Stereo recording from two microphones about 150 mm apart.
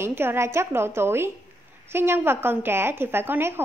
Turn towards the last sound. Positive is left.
turn(degrees=-15)  # may be behind; listen again after turning